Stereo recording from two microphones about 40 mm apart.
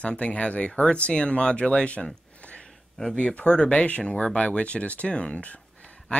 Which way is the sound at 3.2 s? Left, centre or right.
Left.